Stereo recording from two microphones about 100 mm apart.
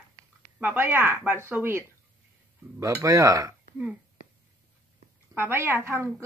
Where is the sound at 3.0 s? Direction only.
35° right (ahead or behind).